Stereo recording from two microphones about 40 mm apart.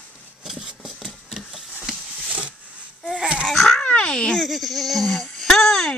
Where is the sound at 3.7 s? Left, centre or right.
Left.